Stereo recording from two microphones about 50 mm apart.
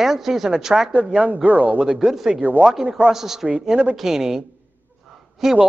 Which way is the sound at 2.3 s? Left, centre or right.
Right.